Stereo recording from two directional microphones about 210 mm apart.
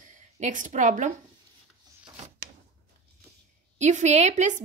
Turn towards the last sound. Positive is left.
turn(degrees=-35)  # may be behind; listen again after turning